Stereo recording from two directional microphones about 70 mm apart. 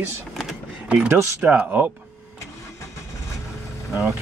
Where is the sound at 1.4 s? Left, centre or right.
Right.